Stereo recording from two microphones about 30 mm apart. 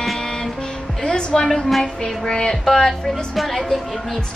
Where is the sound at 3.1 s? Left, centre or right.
Centre.